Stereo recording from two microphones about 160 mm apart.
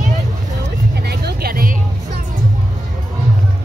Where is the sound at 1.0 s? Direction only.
90° right; by 1.8 s 65° right (ahead or behind).